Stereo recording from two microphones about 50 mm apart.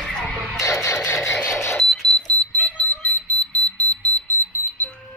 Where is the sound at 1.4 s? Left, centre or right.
Left.